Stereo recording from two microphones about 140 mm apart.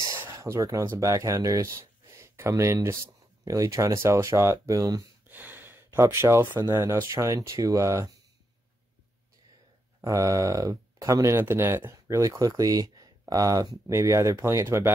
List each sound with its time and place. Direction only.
0.0 s speech: 20° right (ahead or behind)
5.3 s speech: 15° right (ahead or behind)
10.0 s speech: 25° right (ahead or behind)